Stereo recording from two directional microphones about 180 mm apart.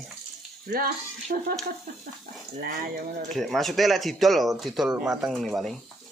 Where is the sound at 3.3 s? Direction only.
Centre (ahead or behind).